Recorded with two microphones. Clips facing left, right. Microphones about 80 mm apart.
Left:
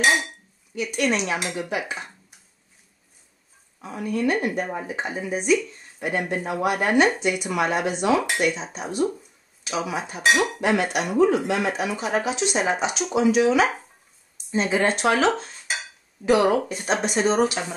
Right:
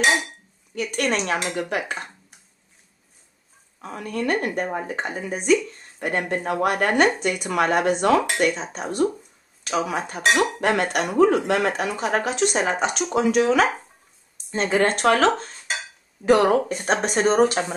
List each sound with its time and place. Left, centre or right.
0.7 s speech: right
3.8 s speech: right
16.3 s speech: right